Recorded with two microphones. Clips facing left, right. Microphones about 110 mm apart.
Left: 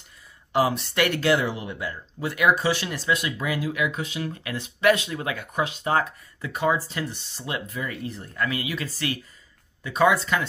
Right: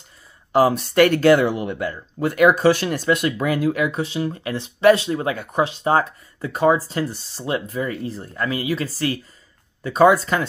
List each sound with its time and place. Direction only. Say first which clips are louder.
0.5 s speech: right 6 dB; 40° right (ahead or behind)